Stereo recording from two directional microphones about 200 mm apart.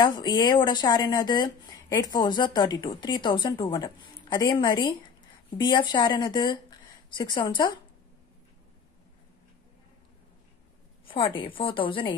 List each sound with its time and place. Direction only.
0.0 s speech: 20° left (ahead or behind)
11.1 s speech: 25° left (ahead or behind)